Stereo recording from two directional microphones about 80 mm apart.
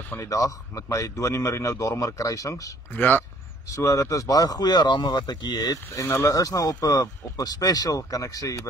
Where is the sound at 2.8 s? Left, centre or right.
Left.